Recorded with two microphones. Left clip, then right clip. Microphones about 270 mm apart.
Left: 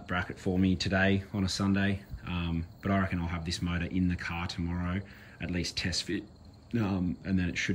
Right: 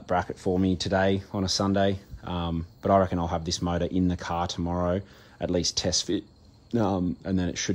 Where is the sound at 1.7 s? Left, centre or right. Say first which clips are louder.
Right 7 dB; right.